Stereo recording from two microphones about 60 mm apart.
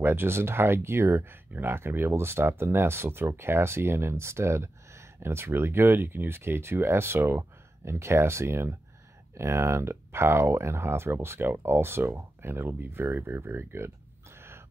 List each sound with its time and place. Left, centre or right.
0.0 s speech: right